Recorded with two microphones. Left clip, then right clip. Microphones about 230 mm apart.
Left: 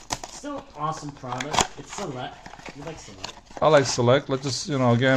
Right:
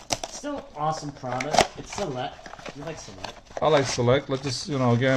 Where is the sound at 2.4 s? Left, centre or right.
Centre.